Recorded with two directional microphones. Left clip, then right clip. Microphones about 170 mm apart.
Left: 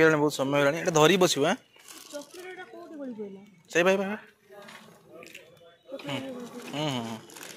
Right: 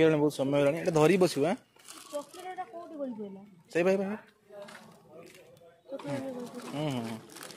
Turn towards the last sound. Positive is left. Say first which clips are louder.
# left 3 dB
turn(degrees=-10)  # may be behind; listen again after turning